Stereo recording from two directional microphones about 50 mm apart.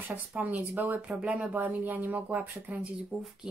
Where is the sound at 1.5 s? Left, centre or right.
Right.